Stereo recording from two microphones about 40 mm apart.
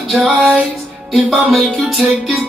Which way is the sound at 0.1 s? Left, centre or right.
Right.